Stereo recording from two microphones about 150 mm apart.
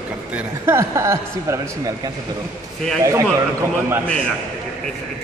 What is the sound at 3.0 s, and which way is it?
Speech, 20° right (ahead or behind).